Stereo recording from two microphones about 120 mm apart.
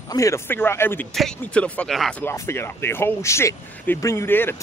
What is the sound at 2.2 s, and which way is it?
Speech, 20° left (ahead or behind).